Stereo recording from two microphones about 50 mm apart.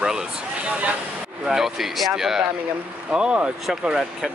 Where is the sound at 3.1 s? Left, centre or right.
Right.